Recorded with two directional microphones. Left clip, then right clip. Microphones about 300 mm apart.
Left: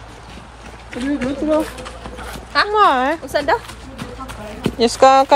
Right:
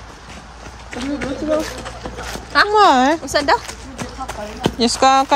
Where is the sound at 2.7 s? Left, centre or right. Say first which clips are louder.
Right 2 dB; centre.